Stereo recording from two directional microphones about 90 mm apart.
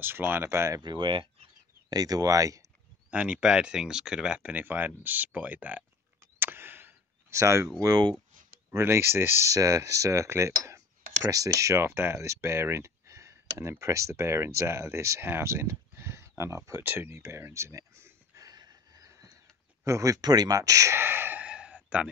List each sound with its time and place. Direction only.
0.0 s speech: 25° right (ahead or behind)
0.8 s speech: 60° right (ahead or behind)
1.9 s speech: 45° right (ahead or behind)
3.1 s speech: 15° right (ahead or behind)
6.4 s a sound: 25° right (ahead or behind)
7.8 s speech: 45° right (ahead or behind)
8.6 s speech: 30° right (ahead or behind)
16.8 s a sound: 25° right (ahead or behind); by 19.3 s 40° right (ahead or behind)
19.8 s speech: 35° right (ahead or behind)
20.2 s speech: 50° right (ahead or behind); by 22.1 s 15° right (ahead or behind)